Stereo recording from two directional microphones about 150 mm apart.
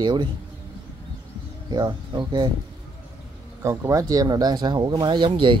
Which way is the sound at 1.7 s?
25° right (ahead or behind).